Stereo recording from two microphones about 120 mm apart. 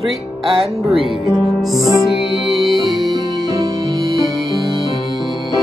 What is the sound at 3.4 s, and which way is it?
Music, 30° right (ahead or behind).